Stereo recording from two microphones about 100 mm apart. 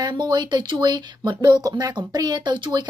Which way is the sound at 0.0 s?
45° right (ahead or behind).